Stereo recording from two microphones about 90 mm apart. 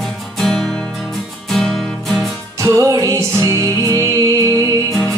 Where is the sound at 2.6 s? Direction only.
35° right (ahead or behind).